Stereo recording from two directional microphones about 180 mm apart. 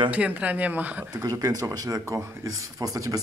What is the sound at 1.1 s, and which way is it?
Speech, 20° right (ahead or behind).